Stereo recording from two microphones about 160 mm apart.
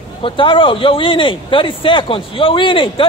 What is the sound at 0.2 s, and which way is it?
Speech, 30° left (ahead or behind).